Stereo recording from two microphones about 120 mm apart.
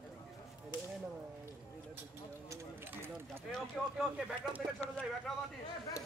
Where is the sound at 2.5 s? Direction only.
20° right (ahead or behind).